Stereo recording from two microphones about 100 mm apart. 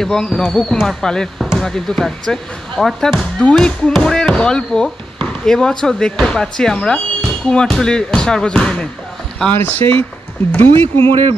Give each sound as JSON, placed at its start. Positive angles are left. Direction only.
{"t": 0.0, "sound": "speech", "side_deg": 5}
{"t": 11.0, "sound": "speech", "side_deg": -65}